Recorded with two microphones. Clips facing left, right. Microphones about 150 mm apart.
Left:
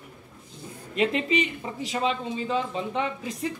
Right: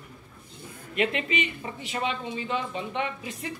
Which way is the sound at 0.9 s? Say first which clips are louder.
Left 3 dB; 35° left (ahead or behind).